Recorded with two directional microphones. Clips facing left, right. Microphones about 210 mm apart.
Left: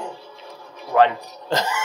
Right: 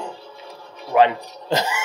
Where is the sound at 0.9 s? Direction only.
15° right (ahead or behind).